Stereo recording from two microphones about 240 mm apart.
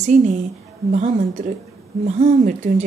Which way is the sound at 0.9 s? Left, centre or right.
Right.